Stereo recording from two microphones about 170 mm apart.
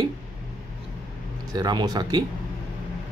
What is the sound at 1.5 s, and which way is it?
Speech, 25° right (ahead or behind).